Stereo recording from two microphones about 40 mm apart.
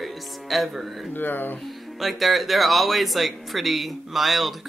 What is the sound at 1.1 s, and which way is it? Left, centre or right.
Speech, left.